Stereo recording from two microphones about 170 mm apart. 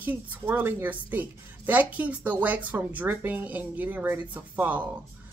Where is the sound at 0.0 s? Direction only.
10° right (ahead or behind).